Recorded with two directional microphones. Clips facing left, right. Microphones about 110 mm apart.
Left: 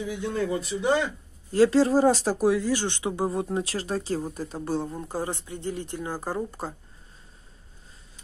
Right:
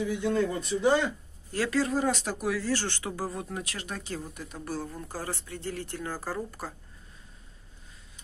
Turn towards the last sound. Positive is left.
turn(degrees=25)  # may be behind; listen again after turning